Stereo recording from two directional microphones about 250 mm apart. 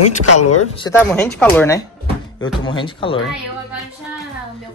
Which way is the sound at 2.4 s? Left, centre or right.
Centre.